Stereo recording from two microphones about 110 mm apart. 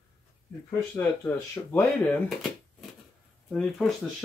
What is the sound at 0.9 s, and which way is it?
Speech, 20° left (ahead or behind).